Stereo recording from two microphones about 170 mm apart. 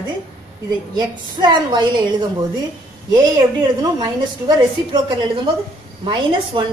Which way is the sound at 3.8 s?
20° right (ahead or behind).